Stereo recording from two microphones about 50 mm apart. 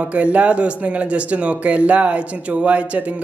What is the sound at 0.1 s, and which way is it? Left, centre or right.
Speech, right.